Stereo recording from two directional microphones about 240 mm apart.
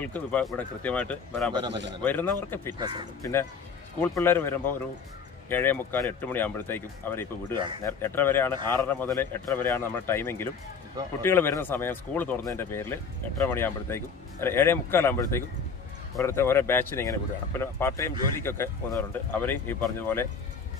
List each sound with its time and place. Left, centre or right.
0.0 s speech: centre
1.7 s a man's voice: right
2.0 s speech: centre
2.8 s speech: centre
3.2 s speech: centre